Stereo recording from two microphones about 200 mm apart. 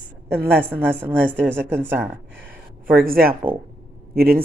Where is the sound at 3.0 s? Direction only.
45° right (ahead or behind).